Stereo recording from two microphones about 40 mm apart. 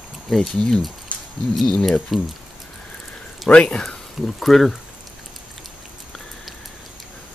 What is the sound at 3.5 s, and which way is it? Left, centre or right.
Speech, left.